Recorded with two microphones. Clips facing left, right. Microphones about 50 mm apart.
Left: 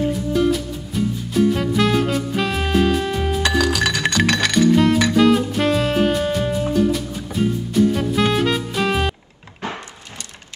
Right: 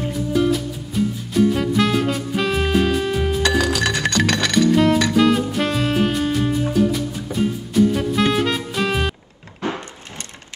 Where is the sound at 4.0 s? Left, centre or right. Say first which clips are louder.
Left 2 dB; left.